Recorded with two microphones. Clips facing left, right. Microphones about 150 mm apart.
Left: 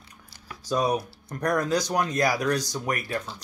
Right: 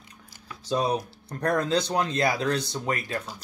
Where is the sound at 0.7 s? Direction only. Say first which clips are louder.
Left 1 dB; 30° right (ahead or behind).